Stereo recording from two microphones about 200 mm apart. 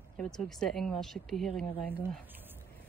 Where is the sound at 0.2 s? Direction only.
5° left (ahead or behind).